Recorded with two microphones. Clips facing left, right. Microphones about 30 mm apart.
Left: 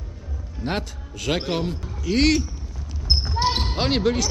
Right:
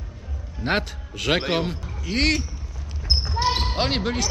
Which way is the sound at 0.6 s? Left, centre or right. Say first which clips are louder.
Right 3 dB; right.